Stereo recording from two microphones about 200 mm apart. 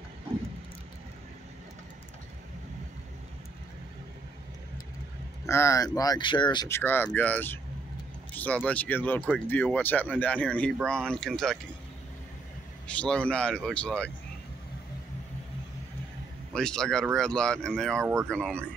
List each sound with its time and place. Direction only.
5.5 s speech: 15° left (ahead or behind)
6.8 s speech: 10° left (ahead or behind)
12.8 s speech: 5° left (ahead or behind)
16.5 s speech: 5° left (ahead or behind)